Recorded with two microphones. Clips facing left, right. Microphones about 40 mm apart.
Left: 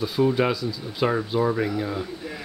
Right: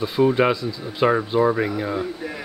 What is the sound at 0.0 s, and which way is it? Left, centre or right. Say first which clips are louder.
Speech: right 3 dB; centre.